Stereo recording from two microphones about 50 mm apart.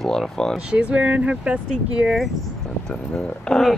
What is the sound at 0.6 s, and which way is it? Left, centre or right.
Speech, right.